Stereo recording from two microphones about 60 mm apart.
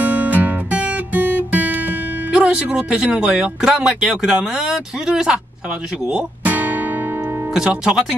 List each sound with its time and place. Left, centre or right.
0.0 s music: right
2.3 s speech: centre
6.0 s music: right
7.5 s speech: centre